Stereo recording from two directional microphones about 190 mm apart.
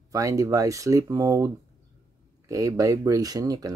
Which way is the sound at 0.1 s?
15° right (ahead or behind).